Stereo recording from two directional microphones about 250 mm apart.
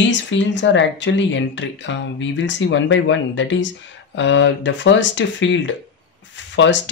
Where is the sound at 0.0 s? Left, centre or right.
Left.